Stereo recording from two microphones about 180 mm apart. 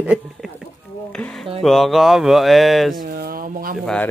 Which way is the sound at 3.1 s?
55° right (ahead or behind).